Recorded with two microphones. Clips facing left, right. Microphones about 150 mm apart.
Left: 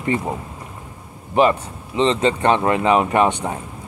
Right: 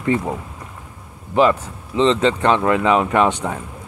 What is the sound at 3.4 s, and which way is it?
Speech, 20° left (ahead or behind).